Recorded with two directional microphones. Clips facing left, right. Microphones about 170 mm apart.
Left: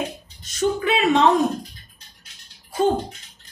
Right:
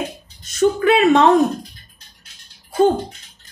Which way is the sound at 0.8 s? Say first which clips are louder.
Right 6 dB; 60° right (ahead or behind).